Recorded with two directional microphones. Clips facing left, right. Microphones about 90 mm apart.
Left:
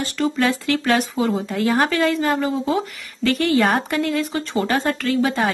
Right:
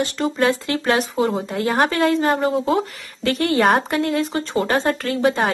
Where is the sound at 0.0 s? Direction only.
30° right (ahead or behind).